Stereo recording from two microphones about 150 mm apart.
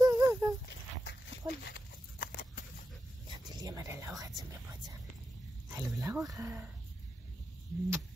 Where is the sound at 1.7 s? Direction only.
90° left.